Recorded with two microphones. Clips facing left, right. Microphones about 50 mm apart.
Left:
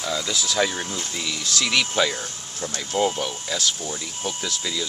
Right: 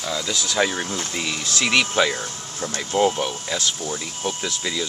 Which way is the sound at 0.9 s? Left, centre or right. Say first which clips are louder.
Right 3 dB; right.